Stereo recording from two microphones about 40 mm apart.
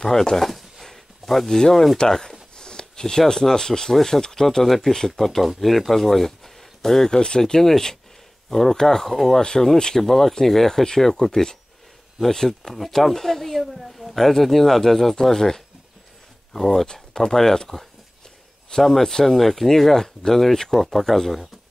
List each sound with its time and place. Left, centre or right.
0.0 s a sound: centre
1.6 s speech: centre
9.4 s speech: centre
9.9 s speech: centre
16.8 s speech: centre